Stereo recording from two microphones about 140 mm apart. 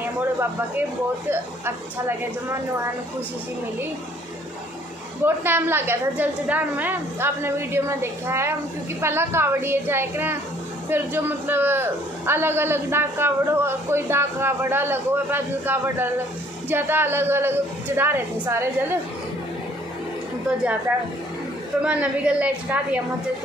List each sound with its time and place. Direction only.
5.2 s a man's voice: 15° right (ahead or behind)
21.8 s a man's voice: 10° right (ahead or behind)